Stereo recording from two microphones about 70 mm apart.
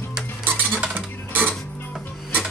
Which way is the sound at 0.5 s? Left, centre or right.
Right.